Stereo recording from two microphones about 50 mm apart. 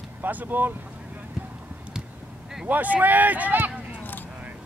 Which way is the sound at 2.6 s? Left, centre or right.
Right.